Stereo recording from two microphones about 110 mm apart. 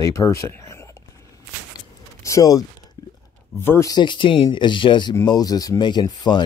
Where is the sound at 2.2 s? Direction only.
30° left (ahead or behind).